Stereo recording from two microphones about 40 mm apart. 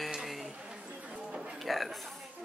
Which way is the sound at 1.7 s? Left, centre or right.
Centre.